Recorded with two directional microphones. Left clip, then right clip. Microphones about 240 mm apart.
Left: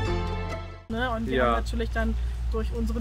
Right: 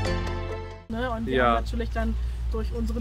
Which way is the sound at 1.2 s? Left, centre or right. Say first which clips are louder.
Right 3 dB; right.